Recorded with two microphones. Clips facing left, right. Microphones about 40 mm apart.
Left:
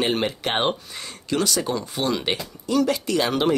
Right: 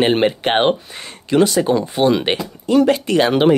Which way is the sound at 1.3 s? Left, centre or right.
Right.